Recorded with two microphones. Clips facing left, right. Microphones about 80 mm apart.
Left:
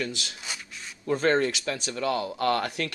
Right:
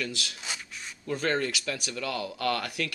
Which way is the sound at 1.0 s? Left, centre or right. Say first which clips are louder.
Left 5 dB; left.